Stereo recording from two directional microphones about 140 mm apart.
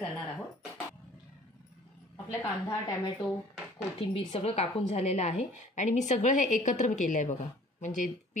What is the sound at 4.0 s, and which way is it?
A woman's voice, 45° left (ahead or behind).